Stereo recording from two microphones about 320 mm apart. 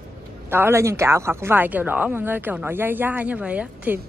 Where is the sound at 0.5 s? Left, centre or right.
Centre.